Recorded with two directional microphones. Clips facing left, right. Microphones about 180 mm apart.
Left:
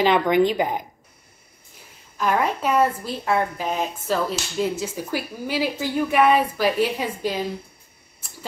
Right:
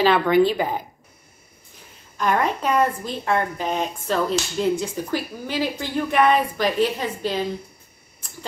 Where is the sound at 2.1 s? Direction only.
5° left (ahead or behind).